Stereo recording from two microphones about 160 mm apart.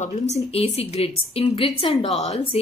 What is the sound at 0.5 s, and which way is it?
Speech, 40° left (ahead or behind).